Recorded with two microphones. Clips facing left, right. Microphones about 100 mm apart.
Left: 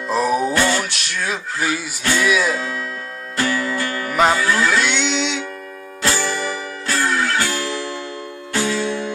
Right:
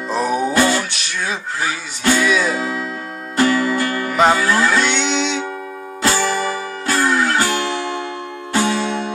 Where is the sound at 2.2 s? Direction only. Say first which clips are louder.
Left 3 dB; centre (ahead or behind).